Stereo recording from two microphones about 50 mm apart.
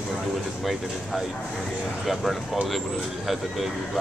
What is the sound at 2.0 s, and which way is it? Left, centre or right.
Speech, centre.